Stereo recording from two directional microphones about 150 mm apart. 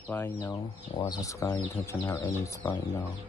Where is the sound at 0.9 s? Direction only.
25° left (ahead or behind).